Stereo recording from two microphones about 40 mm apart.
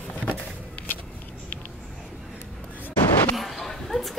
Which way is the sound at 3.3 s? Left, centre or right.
Centre.